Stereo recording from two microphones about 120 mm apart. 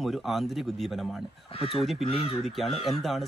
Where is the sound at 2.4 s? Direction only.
Centre (ahead or behind).